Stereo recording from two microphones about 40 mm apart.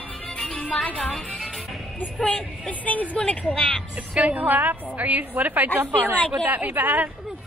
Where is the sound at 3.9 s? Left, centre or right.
Right.